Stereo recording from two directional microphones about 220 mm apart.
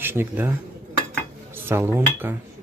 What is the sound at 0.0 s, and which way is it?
Speech, 10° right (ahead or behind).